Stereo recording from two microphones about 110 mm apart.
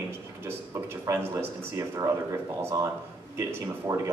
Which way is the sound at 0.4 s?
20° right (ahead or behind).